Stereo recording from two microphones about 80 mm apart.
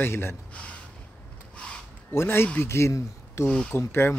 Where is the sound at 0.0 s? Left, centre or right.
Left.